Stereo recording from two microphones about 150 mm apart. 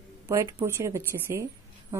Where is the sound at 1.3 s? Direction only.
20° right (ahead or behind).